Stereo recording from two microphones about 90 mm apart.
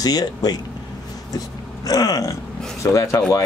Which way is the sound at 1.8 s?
45° left (ahead or behind).